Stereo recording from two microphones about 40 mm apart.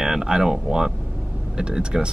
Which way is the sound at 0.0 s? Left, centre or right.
Centre.